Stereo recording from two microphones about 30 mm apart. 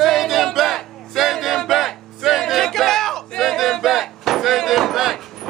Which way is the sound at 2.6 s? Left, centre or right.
Centre.